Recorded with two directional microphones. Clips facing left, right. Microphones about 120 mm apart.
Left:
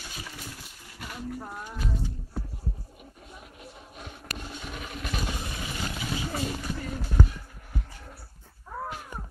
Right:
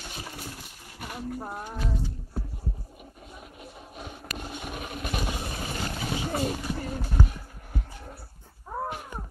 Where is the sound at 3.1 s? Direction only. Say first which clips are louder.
Right 1 dB; 20° right (ahead or behind).